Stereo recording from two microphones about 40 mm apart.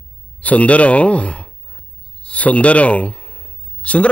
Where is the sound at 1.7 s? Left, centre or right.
Left.